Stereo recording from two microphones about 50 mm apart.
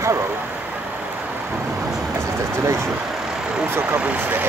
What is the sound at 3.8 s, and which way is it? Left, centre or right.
Speech, right.